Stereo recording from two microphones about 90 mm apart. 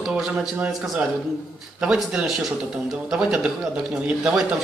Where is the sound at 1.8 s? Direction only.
5° right (ahead or behind).